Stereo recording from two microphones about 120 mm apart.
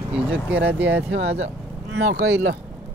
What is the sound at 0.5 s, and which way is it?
Speech, 10° right (ahead or behind).